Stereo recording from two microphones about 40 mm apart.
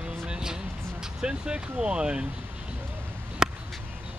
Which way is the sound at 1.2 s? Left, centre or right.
Right.